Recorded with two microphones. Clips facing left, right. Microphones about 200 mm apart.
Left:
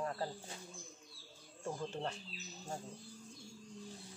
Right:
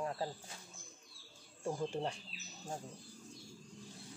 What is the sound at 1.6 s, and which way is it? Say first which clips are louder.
Speech: right 3 dB; 10° right (ahead or behind).